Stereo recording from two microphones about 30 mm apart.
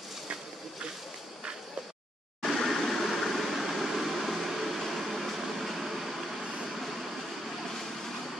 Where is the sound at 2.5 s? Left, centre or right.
Centre.